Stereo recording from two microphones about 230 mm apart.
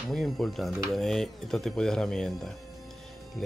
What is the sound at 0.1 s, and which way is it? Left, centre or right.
Speech, centre.